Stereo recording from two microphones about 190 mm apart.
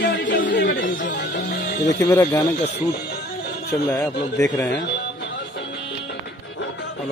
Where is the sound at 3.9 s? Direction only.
20° left (ahead or behind).